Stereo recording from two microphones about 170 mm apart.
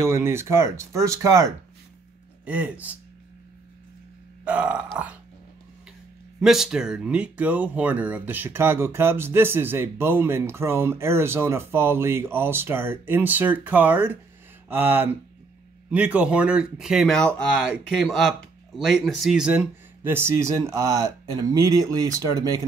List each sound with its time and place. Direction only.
0.0 s speech: 15° right (ahead or behind)
2.4 s speech: 10° right (ahead or behind)
4.5 s speech: 10° right (ahead or behind)
6.4 s speech: centre (ahead or behind); by 22.7 s 20° right (ahead or behind)